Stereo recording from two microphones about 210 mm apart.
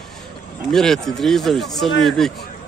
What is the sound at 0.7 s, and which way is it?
A man's voice, centre (ahead or behind).